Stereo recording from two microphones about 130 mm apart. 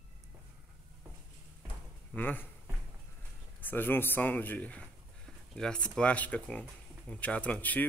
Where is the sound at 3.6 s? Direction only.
15° left (ahead or behind).